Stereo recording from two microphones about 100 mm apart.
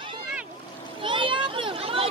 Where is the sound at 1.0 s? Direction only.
60° right (ahead or behind).